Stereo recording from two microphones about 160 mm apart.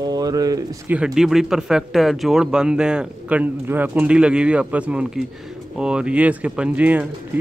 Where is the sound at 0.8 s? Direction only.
5° right (ahead or behind).